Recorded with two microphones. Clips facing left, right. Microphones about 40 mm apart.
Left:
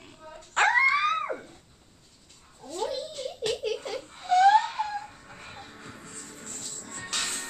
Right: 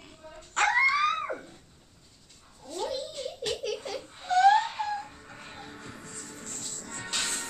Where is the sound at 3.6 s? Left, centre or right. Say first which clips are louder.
Left 2 dB; centre.